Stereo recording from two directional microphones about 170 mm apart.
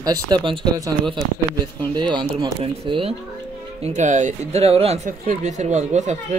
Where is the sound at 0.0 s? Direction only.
25° right (ahead or behind).